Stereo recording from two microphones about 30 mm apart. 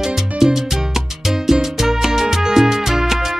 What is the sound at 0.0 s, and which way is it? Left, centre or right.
Music, centre.